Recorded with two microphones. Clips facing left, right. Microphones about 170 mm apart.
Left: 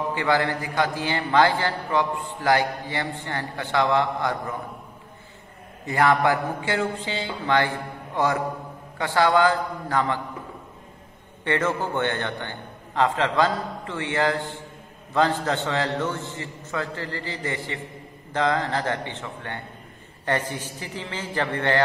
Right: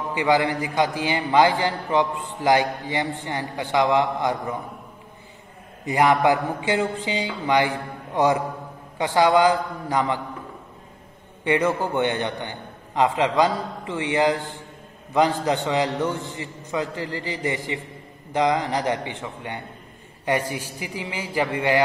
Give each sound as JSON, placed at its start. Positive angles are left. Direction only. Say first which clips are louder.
{"t": 0.1, "sound": "a man's voice", "louder": "right 5 dB", "side_deg": -15}
{"t": 5.9, "sound": "a man's voice", "louder": "right 2 dB", "side_deg": -15}
{"t": 11.4, "sound": "a man's voice", "louder": "right 3 dB", "side_deg": -15}